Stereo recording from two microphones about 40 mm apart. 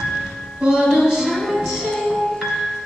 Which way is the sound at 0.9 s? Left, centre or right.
Centre.